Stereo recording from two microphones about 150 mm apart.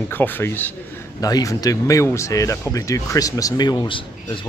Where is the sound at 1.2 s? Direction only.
25° left (ahead or behind).